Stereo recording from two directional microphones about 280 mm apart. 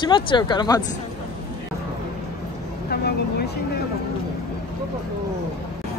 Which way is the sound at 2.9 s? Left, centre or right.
Left.